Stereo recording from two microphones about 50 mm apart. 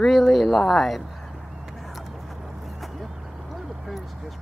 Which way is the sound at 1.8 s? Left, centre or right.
Centre.